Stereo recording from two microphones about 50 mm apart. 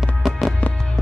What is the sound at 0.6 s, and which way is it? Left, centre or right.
Music, left.